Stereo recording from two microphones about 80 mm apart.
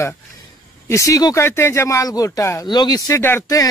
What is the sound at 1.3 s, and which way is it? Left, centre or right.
Speech, left.